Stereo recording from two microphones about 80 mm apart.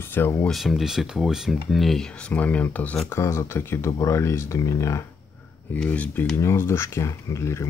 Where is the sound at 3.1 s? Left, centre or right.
Left.